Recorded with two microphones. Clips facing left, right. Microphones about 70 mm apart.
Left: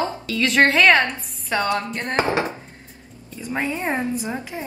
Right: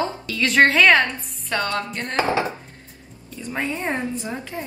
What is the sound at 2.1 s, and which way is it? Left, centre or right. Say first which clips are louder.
Speech: even; left.